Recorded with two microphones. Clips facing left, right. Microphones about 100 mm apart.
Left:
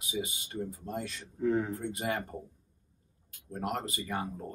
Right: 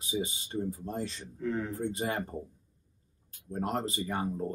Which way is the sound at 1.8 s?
30° right (ahead or behind).